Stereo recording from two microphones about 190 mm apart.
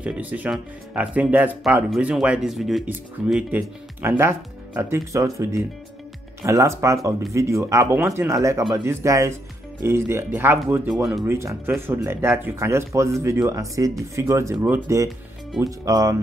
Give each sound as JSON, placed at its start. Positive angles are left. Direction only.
{"t": 0.0, "sound": "speech", "side_deg": -5}